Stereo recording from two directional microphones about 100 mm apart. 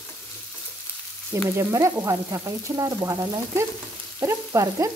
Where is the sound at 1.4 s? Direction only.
30° right (ahead or behind).